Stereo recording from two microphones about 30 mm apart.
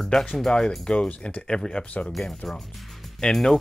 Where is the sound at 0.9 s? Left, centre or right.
Left.